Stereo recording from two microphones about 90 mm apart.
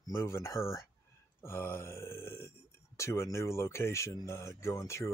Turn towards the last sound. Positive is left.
turn(degrees=35)  # may be behind; listen again after turning